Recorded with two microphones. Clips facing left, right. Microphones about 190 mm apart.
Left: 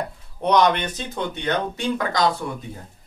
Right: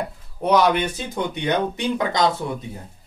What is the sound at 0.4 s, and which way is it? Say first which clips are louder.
Speech: right 1 dB; 5° right (ahead or behind).